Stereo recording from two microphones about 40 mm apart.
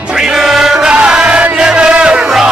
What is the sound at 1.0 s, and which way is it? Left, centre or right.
Music, right.